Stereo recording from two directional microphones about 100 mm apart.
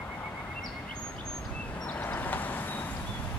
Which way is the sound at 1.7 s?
15° left (ahead or behind).